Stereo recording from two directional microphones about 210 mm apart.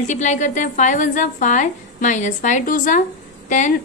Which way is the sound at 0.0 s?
35° left (ahead or behind).